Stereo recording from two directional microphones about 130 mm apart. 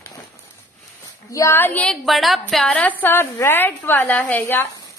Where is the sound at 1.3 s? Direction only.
20° left (ahead or behind).